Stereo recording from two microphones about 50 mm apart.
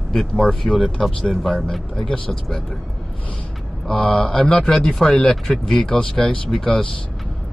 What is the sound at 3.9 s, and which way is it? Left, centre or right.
Speech, left.